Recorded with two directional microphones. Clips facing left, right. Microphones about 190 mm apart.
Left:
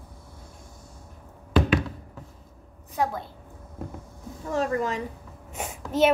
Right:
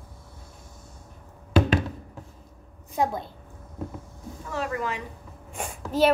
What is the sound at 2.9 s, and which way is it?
Speech, 20° right (ahead or behind).